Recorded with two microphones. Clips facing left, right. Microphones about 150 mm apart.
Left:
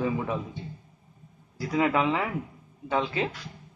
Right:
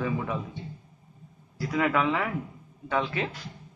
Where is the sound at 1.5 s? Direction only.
20° left (ahead or behind).